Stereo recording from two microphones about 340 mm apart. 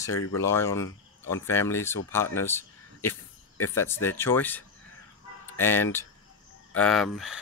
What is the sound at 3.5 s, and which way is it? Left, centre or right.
Speech, left.